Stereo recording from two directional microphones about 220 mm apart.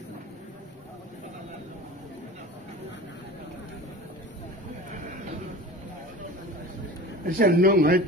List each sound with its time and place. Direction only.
7.2 s speech: 40° right (ahead or behind)